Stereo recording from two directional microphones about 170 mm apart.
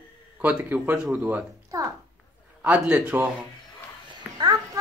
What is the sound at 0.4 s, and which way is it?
Speech, 10° right (ahead or behind).